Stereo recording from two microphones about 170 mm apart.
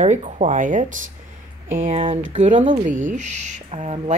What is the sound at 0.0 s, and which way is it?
Speech, 45° right (ahead or behind).